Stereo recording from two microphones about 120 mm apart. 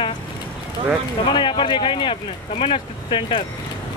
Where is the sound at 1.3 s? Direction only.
40° left (ahead or behind).